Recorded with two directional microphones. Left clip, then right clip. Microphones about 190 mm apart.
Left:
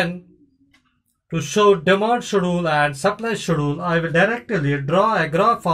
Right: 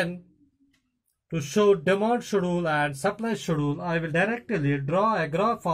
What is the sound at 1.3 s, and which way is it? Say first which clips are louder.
Speech: left 6 dB; 20° right (ahead or behind).